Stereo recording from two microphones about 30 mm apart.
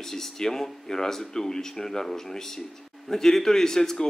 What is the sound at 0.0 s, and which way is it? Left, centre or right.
A man's voice, centre.